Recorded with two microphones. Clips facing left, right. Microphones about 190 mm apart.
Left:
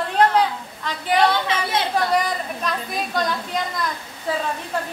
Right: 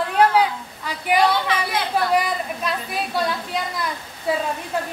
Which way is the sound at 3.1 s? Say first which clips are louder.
Even; 5° right (ahead or behind).